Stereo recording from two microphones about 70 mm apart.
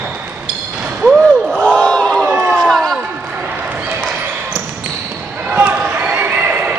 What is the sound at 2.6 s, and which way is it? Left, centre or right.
Basketball bounce, centre.